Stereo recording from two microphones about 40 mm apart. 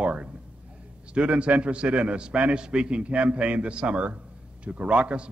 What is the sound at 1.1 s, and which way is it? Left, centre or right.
A man's voice, right.